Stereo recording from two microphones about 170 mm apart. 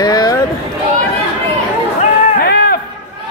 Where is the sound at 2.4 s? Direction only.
65° left (ahead or behind).